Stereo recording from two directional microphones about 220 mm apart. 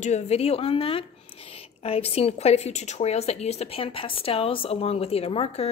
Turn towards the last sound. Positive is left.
turn(degrees=25)  # may be behind; listen again after turning